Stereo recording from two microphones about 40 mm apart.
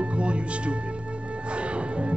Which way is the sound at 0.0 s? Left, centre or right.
Right.